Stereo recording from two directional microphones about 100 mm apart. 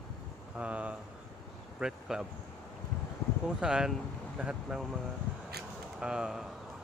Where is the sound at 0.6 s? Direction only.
10° right (ahead or behind).